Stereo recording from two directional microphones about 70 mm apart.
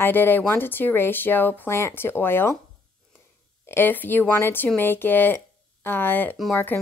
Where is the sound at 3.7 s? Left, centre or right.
Left.